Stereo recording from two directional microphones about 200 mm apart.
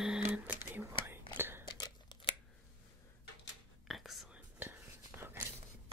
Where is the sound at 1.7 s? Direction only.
20° left (ahead or behind).